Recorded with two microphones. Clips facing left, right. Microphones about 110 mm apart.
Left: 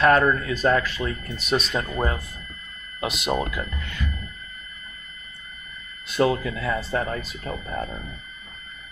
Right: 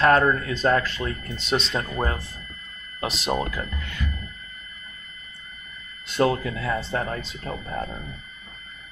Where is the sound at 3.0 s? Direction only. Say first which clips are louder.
Left 1 dB; 30° right (ahead or behind).